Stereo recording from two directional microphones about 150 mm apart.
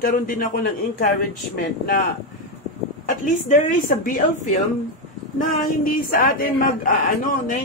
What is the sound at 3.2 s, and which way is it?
Speech, 65° left (ahead or behind).